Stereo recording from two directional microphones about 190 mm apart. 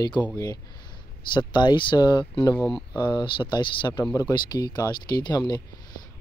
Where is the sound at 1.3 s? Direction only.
25° left (ahead or behind).